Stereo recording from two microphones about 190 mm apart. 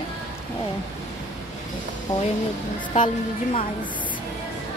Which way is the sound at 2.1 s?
20° left (ahead or behind).